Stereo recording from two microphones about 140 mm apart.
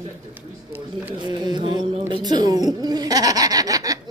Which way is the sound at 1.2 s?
30° right (ahead or behind).